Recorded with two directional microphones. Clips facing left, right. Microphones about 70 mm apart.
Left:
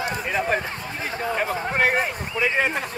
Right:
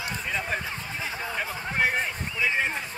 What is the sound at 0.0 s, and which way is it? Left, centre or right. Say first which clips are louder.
Run: left 6 dB; left.